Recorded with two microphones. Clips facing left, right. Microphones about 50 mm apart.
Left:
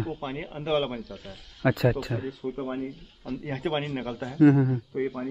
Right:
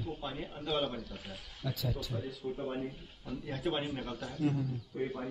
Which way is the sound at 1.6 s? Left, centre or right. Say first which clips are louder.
Left 14 dB; left.